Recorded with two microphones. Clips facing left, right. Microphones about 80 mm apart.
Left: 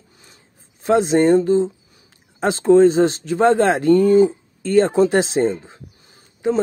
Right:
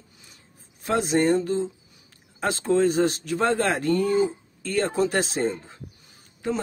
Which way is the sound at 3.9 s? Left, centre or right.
Left.